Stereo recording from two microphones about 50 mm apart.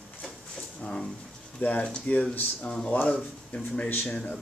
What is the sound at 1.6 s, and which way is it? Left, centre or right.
Speech, left.